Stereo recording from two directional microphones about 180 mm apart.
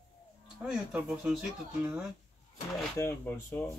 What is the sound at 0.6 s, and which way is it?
Speech, 5° right (ahead or behind).